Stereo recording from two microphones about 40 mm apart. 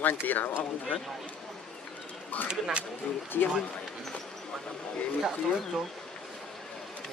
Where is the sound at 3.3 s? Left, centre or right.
Left.